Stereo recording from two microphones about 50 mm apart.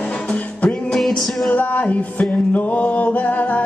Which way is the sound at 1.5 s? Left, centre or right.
Left.